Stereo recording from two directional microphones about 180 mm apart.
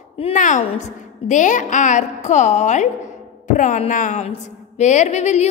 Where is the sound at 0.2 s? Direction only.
45° left (ahead or behind).